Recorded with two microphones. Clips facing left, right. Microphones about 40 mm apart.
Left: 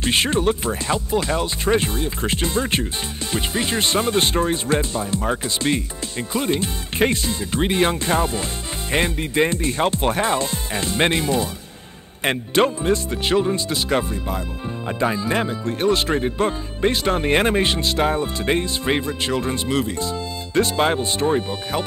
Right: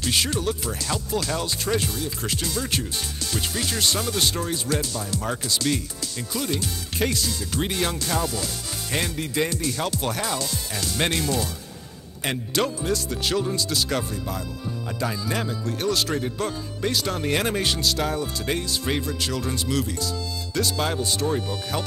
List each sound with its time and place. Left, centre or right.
0.0 s speech: left